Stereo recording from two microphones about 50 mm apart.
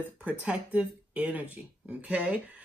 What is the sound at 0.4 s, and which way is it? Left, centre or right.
Speech, right.